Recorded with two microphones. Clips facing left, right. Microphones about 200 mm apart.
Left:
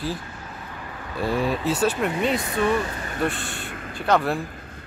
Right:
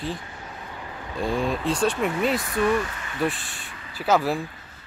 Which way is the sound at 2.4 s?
25° left (ahead or behind).